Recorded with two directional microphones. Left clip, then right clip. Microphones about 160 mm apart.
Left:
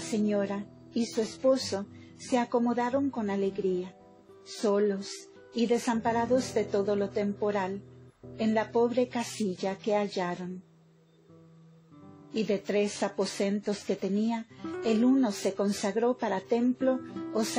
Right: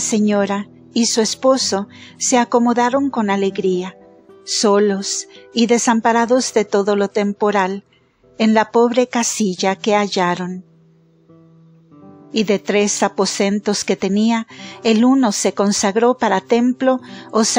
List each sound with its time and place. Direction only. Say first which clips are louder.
0.1 s speech: right 12 dB; 50° right (ahead or behind)
12.4 s speech: right 12 dB; 50° right (ahead or behind)